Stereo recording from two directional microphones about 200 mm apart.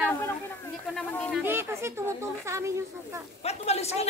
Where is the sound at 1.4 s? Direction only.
10° right (ahead or behind).